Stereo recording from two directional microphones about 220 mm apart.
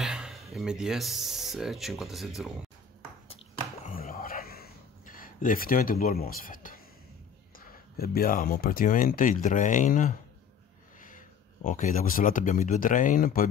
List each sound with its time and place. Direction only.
0.0 s speech: centre (ahead or behind)
3.8 s whispering: 40° left (ahead or behind)
7.5 s speech: 40° left (ahead or behind)